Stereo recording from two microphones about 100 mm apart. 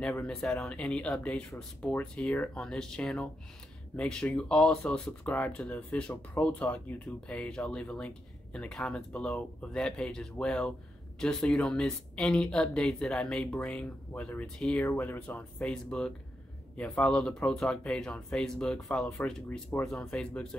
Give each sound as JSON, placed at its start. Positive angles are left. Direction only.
{"t": 0.0, "sound": "speech", "side_deg": 10}